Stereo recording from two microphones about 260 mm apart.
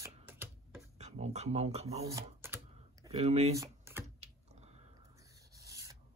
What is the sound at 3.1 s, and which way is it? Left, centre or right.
Speech, right.